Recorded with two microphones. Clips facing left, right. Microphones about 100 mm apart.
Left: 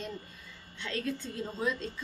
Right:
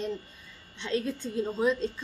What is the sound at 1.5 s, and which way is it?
Speech, 25° right (ahead or behind).